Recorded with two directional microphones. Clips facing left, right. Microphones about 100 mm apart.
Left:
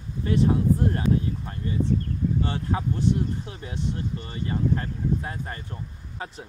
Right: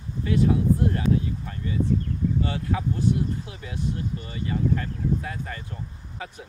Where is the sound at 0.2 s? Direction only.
35° left (ahead or behind).